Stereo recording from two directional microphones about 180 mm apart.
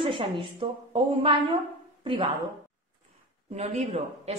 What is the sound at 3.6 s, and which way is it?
Speech, 35° right (ahead or behind).